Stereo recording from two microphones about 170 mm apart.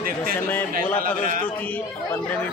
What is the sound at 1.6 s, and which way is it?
Speech, 10° left (ahead or behind).